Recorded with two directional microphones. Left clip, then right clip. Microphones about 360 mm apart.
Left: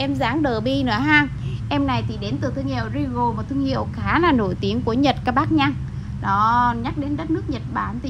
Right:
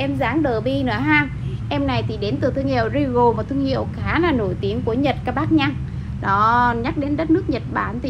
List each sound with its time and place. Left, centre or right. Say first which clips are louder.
0.0 s a woman's voice: right 1 dB; left